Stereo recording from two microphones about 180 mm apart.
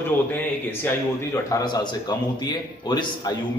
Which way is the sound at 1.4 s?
20° left (ahead or behind).